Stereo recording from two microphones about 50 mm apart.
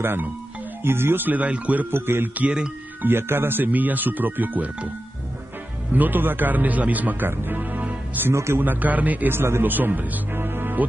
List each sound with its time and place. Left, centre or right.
0.0 s speech: right
1.9 s speech: right
3.0 s speech: right
5.9 s speech: right
9.3 s speech: right